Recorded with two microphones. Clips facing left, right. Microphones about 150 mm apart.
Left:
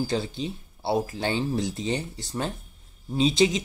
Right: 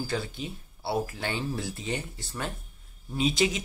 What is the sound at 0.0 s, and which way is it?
Speech, 30° left (ahead or behind).